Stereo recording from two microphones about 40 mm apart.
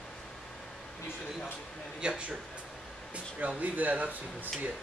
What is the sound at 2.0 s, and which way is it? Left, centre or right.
Speech, right.